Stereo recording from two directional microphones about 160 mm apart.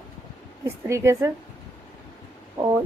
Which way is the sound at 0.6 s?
15° right (ahead or behind).